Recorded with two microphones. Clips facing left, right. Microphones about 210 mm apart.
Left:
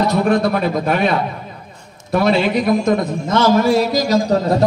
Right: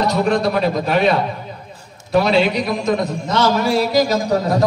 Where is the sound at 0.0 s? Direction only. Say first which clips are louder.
Left 2 dB; 50° left (ahead or behind).